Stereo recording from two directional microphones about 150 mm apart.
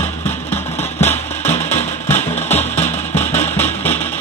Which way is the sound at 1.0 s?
10° left (ahead or behind).